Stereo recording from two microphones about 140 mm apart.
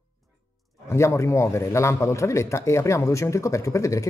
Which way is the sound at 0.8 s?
20° left (ahead or behind).